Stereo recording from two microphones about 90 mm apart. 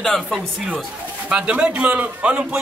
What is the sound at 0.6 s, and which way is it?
A man's voice, 10° right (ahead or behind).